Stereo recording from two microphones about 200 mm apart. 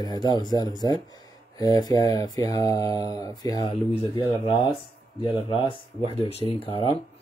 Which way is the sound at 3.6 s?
30° left (ahead or behind).